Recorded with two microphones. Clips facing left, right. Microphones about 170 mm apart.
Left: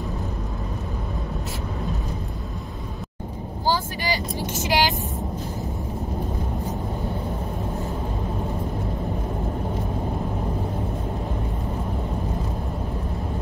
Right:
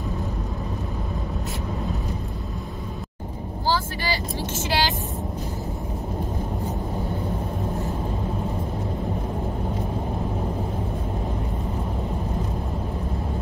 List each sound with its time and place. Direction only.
3.6 s speech: 15° left (ahead or behind)